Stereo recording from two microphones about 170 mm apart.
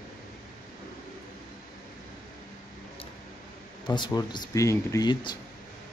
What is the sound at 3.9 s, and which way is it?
Speech, 25° left (ahead or behind).